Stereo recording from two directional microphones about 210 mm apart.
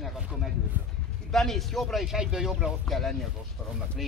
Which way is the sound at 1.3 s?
Centre (ahead or behind).